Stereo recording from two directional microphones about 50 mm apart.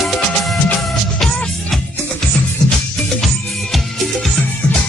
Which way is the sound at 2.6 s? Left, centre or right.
Centre.